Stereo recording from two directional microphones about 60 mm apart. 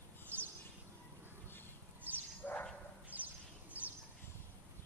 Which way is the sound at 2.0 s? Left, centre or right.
Right.